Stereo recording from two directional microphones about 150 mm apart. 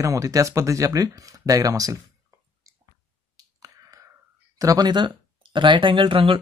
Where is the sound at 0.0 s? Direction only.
20° right (ahead or behind).